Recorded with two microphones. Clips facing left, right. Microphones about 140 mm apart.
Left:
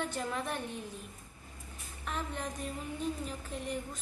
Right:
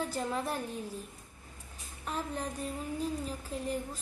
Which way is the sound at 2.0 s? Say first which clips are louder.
Right 2 dB; 35° right (ahead or behind).